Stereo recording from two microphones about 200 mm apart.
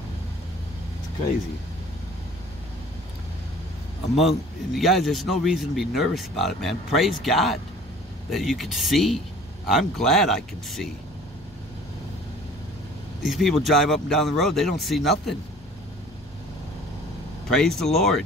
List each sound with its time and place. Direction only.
4.1 s a man's voice: 30° left (ahead or behind)
4.7 s speech: centre (ahead or behind)
13.2 s speech: centre (ahead or behind)
17.5 s speech: 5° left (ahead or behind)